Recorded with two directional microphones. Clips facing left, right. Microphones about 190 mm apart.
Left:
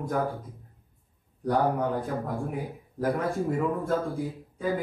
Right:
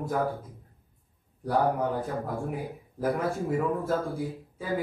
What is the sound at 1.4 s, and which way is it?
A man's voice, 5° right (ahead or behind).